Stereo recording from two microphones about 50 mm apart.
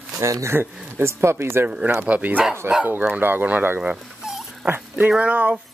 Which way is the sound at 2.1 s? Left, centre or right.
Right.